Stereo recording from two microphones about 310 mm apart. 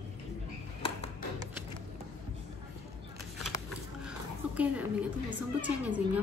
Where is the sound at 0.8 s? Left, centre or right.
Centre.